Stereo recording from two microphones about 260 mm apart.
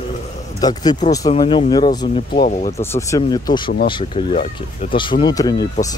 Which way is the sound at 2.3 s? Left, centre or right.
Left.